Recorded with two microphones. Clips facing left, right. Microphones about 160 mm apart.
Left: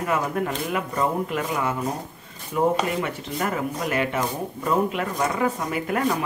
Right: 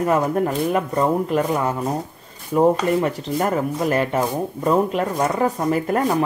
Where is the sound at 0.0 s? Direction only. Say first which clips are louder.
Right 6 dB; 35° right (ahead or behind).